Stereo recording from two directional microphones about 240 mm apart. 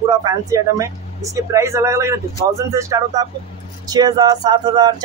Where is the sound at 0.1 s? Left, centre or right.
Centre.